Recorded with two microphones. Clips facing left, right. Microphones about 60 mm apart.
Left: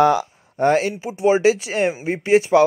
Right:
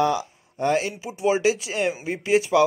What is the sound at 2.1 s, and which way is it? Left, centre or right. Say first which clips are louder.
Speech: left 6 dB; left.